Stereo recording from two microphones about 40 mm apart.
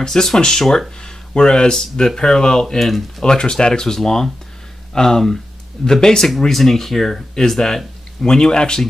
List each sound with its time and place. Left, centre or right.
0.0 s speech: centre
2.8 s speech: centre
3.3 s speech: left